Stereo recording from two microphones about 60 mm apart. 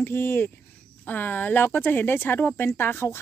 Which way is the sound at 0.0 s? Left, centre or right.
Left.